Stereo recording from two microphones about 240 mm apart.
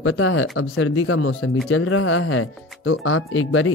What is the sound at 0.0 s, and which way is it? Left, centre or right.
Speech, left.